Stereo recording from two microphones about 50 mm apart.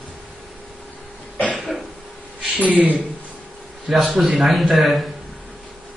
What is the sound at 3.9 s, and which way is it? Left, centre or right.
A man's voice, centre.